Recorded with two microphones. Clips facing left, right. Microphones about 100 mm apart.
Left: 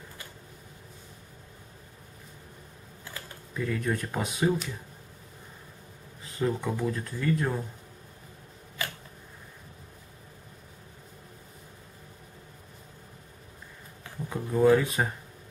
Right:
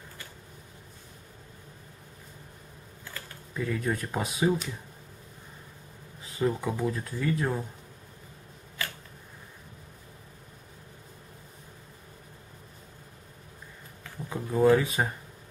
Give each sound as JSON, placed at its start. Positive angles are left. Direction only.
{"t": 3.5, "sound": "speech", "side_deg": -5}
{"t": 6.2, "sound": "speech", "side_deg": 0}
{"t": 8.8, "sound": "a sound", "side_deg": 20}
{"t": 14.3, "sound": "speech", "side_deg": 0}